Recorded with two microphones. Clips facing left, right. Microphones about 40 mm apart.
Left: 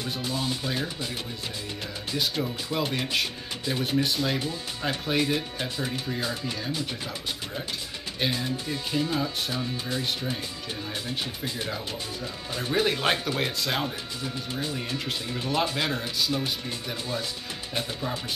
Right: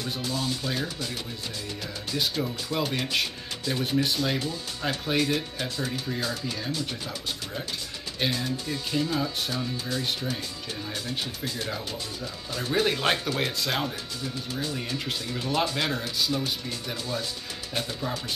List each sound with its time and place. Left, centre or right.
0.0 s speech: centre
2.4 s speech: centre
8.2 s speech: centre
9.8 s speech: centre